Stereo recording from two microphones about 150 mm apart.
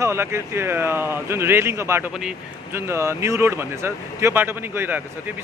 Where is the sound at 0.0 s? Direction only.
15° right (ahead or behind).